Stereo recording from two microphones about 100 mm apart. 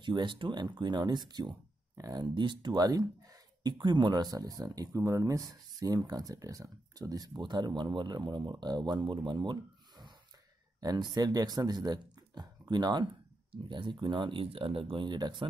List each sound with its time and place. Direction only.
0.0 s speech: 50° right (ahead or behind)
2.2 s speech: 50° right (ahead or behind)